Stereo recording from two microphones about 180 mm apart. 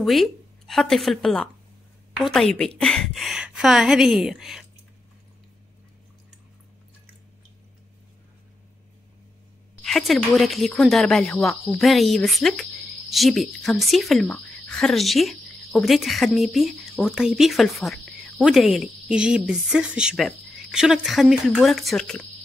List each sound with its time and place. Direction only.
0.0 s a woman's voice: centre (ahead or behind)
9.8 s speech: centre (ahead or behind)